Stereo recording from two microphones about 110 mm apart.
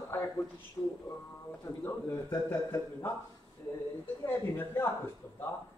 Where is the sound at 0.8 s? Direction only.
15° left (ahead or behind).